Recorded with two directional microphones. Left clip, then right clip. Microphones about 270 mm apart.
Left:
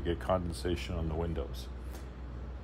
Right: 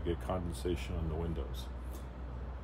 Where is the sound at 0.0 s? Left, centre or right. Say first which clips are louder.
Left 5 dB; left.